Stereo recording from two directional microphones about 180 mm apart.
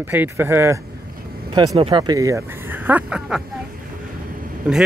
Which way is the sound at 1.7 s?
30° right (ahead or behind).